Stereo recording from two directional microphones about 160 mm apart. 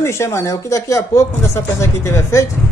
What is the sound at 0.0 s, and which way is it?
Speech, 15° left (ahead or behind).